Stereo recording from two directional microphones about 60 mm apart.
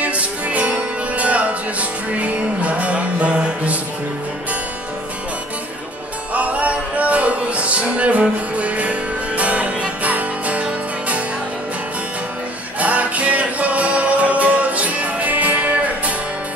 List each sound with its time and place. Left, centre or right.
0.0 s music: right
6.3 s music: right
12.7 s music: right